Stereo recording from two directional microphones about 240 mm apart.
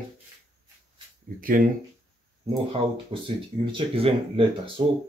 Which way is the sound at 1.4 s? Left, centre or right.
Right.